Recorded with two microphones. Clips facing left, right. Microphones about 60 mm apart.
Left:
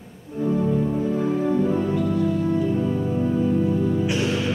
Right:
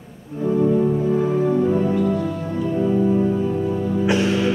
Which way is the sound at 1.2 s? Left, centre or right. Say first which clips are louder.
Right 3 dB; centre.